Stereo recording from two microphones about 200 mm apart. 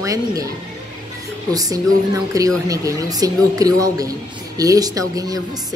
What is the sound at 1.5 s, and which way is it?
A woman's voice, 20° right (ahead or behind).